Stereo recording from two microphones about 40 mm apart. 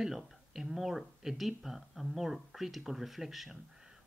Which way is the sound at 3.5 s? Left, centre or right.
Centre.